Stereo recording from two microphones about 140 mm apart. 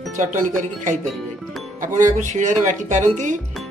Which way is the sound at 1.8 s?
65° right (ahead or behind).